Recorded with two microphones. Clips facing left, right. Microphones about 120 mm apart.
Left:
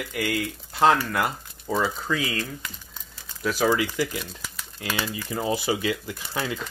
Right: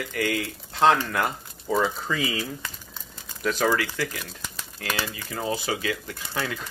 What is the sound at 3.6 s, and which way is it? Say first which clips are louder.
Speech: left 3 dB; 15° left (ahead or behind).